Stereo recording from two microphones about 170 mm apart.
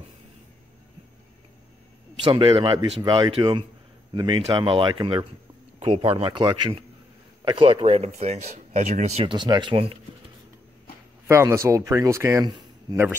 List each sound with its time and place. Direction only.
2.2 s speech: 25° right (ahead or behind)
11.2 s speech: 15° right (ahead or behind)